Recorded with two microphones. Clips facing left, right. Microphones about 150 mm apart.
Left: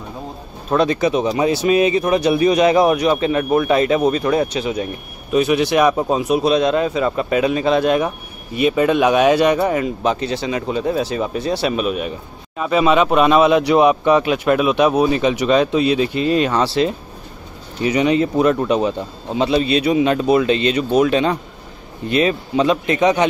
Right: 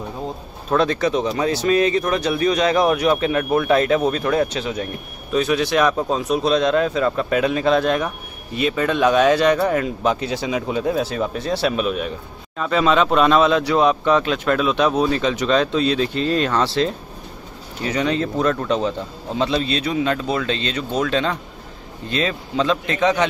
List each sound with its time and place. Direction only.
0.7 s speech: 5° left (ahead or behind)